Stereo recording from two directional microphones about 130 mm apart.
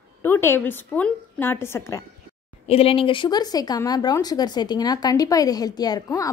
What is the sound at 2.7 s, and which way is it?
Speech, 50° left (ahead or behind).